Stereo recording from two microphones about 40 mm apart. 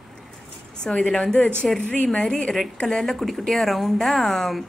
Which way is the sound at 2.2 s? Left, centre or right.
Centre.